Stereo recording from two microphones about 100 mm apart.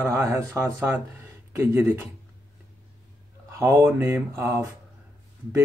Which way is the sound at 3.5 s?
25° right (ahead or behind).